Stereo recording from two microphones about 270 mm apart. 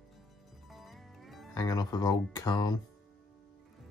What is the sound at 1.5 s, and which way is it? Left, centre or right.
Speech, centre.